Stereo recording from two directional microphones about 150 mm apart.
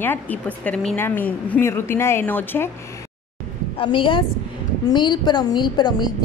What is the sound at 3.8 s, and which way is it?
A woman's voice, 35° left (ahead or behind).